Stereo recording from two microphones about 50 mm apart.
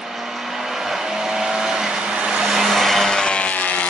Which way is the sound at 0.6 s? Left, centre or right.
Centre.